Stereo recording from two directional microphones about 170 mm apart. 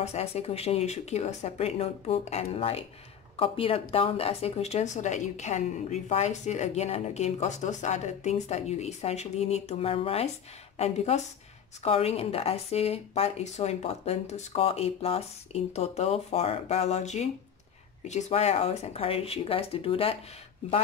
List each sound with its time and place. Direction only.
0.0 s a woman's voice: 40° left (ahead or behind)